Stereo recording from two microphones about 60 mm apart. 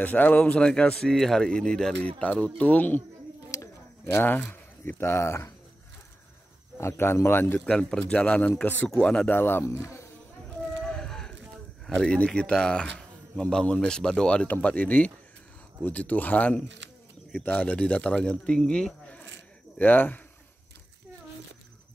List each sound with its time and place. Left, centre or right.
0.0 s speech: left
1.1 s speech: centre
2.2 s speech: left
3.5 s bird: left
4.2 s speech: left
4.9 s speech: left
6.8 s a man's voice: left
7.6 s speech: centre
9.3 s a man's voice: left
9.7 s speech: left
10.8 s a sound: centre
11.9 s a man's voice: centre
19.8 s a man's voice: left